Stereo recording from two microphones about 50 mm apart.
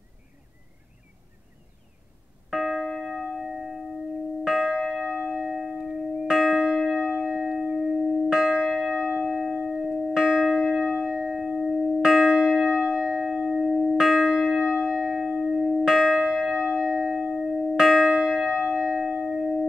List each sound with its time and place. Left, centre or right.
2.5 s music: centre
3.3 s a sound: centre
4.5 s church bell: centre
9.3 s music: centre
9.8 s church bell: centre
19.2 s music: centre